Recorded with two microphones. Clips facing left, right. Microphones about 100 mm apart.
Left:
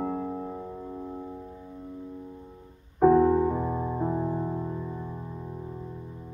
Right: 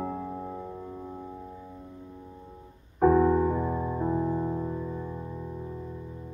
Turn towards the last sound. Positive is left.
turn(degrees=20)  # may be behind; listen again after turning